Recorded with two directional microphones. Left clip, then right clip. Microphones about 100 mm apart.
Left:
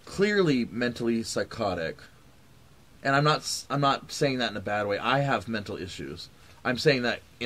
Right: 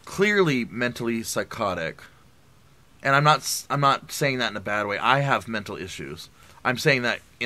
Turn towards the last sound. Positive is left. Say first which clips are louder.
# right 3 dB
turn(degrees=-25)  # may be behind; listen again after turning